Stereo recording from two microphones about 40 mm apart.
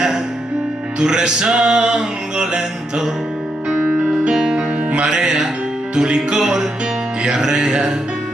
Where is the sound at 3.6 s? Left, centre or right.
Right.